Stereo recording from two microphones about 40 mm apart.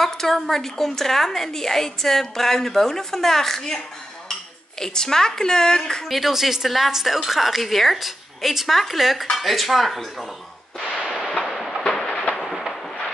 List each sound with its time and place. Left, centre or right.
0.0 s a woman's voice: centre
6.0 s a woman's voice: centre
11.1 s fireworks: centre
11.4 s a sound: centre
11.9 s train: centre